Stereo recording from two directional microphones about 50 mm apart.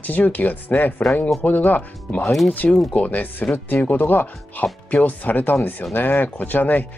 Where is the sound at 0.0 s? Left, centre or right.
Left.